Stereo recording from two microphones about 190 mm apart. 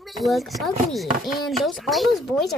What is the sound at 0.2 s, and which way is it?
Speech, centre (ahead or behind).